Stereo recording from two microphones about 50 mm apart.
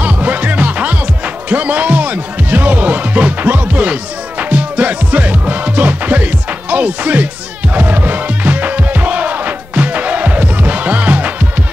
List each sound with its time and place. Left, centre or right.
0.0 s music: right